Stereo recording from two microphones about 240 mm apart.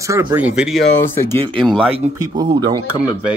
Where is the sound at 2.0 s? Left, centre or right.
Centre.